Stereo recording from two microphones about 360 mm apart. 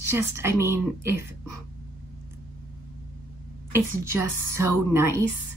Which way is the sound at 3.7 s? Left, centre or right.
Centre.